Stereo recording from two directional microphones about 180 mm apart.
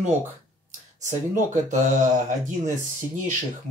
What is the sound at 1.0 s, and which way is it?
Speech, 45° right (ahead or behind).